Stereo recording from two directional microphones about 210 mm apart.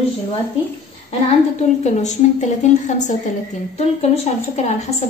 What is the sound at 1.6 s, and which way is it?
A woman's voice, 35° left (ahead or behind).